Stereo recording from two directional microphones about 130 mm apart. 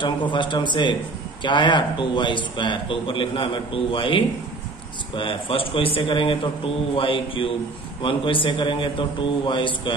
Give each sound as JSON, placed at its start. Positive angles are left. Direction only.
{"t": 0.3, "sound": "a man's voice", "side_deg": 35}